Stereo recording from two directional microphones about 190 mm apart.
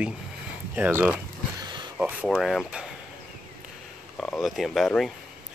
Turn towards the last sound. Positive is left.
turn(degrees=0)  # may be behind; listen again after turning